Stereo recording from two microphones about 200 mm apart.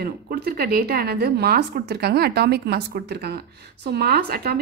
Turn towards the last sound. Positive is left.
turn(degrees=-50)  # may be behind; listen again after turning